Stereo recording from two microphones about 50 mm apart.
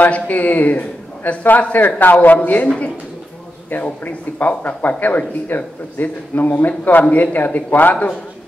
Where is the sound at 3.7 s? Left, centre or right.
Left.